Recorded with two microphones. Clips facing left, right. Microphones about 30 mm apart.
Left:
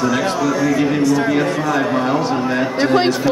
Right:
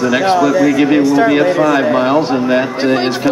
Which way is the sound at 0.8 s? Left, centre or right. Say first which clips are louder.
Right 5 dB; right.